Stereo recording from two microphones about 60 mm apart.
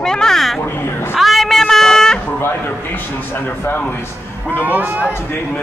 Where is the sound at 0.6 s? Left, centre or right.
Left.